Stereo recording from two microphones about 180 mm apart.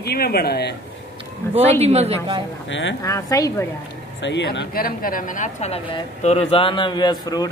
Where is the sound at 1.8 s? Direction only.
35° right (ahead or behind).